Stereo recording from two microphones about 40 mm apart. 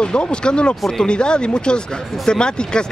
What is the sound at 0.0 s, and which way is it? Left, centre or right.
Speech, left.